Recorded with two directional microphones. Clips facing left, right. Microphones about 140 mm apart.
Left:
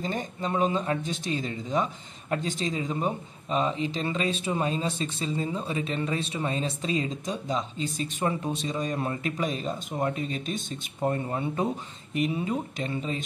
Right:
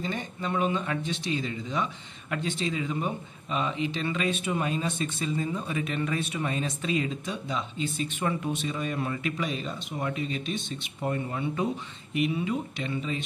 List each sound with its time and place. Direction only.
0.0 s speech: 40° left (ahead or behind)